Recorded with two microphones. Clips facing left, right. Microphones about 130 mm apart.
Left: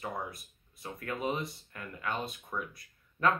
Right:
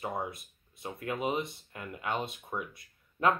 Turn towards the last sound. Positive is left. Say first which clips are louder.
# right 1 dB
turn(degrees=-20)  # may be behind; listen again after turning